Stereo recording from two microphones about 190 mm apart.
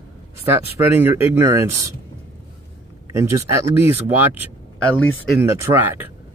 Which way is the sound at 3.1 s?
15° right (ahead or behind).